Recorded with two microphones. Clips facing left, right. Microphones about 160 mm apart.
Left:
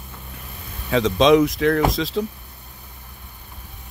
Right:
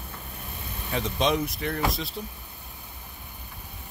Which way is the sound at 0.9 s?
90° left.